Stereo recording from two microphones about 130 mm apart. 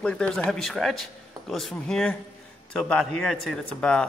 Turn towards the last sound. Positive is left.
turn(degrees=5)  # may be behind; listen again after turning